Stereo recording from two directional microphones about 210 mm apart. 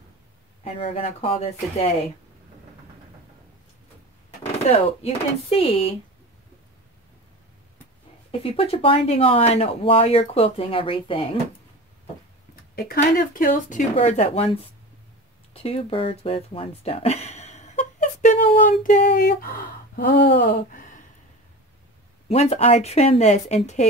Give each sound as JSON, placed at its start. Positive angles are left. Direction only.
{"t": 0.7, "sound": "speech", "side_deg": 25}
{"t": 4.6, "sound": "speech", "side_deg": 30}
{"t": 8.3, "sound": "speech", "side_deg": 25}
{"t": 12.7, "sound": "speech", "side_deg": 50}
{"t": 15.5, "sound": "a sound", "side_deg": 25}
{"t": 22.3, "sound": "speech", "side_deg": 30}